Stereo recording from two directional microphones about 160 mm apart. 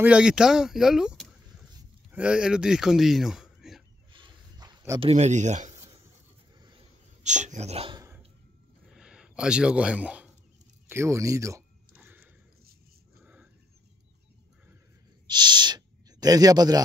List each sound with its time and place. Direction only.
0.0 s speech: 5° right (ahead or behind)
4.1 s a sound: 30° right (ahead or behind)
5.0 s speech: 45° right (ahead or behind)
7.2 s speech: 50° right (ahead or behind)
8.8 s a sound: 5° right (ahead or behind)
15.2 s owl: 25° right (ahead or behind)